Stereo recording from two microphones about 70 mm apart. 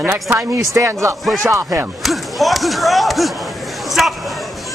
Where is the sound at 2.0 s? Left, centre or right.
Centre.